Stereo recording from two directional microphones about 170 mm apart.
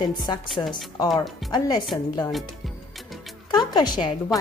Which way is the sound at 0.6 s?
20° left (ahead or behind).